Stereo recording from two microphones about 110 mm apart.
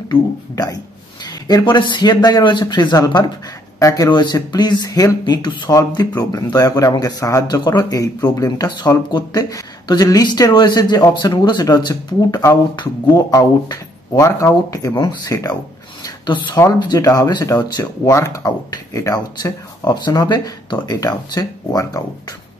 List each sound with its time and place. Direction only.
0.1 s speech: 35° left (ahead or behind)
16.0 s a sound: 45° left (ahead or behind)
16.8 s speech: 35° left (ahead or behind)